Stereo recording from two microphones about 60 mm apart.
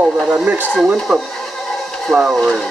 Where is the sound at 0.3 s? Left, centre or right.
Right.